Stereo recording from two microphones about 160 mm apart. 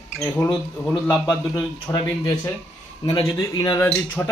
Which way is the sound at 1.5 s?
20° left (ahead or behind).